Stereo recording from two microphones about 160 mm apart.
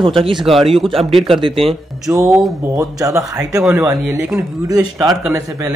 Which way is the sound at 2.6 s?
20° right (ahead or behind).